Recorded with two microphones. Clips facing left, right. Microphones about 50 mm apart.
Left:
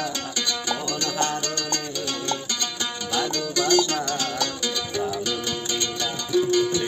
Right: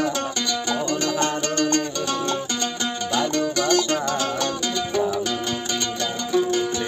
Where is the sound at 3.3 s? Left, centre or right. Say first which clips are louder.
Even; right.